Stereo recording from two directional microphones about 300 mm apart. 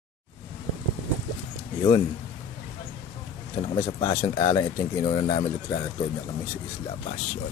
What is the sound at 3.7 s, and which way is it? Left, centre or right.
Speech, centre.